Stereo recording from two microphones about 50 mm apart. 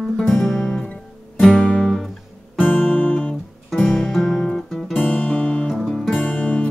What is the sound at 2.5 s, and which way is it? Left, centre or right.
Guitar, left.